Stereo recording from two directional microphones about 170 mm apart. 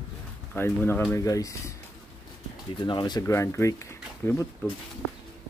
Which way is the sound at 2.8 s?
25° left (ahead or behind).